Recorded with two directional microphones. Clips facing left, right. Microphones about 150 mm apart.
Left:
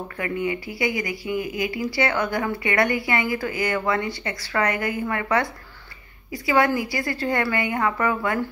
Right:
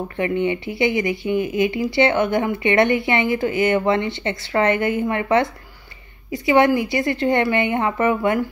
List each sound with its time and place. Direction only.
0.2 s speech: 25° right (ahead or behind)